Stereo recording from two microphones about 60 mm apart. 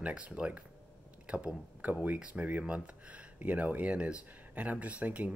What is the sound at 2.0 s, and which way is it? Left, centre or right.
Speech, right.